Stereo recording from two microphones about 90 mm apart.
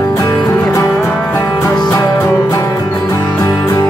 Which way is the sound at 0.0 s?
40° left (ahead or behind).